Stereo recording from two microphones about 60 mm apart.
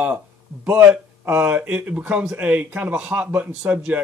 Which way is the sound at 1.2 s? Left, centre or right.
Right.